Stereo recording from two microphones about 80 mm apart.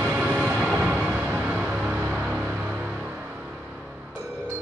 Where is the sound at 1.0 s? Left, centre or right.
Centre.